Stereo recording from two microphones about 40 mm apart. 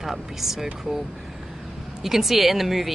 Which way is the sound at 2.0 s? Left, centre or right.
Centre.